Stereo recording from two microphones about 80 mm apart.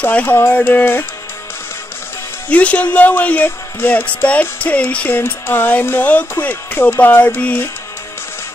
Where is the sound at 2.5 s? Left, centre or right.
Centre.